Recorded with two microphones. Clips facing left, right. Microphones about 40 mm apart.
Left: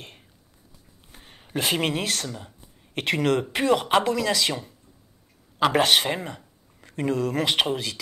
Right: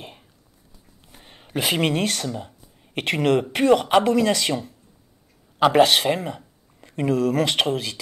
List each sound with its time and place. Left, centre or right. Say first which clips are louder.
1.3 s speech: right 2 dB; centre
4.0 s speech: right 4 dB; right
5.7 s speech: right 4 dB; centre
6.8 s a sound: right 3 dB; centre
7.1 s speech: right 3 dB; centre